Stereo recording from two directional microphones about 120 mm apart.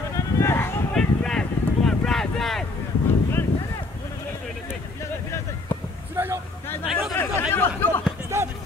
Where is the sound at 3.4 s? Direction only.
15° left (ahead or behind).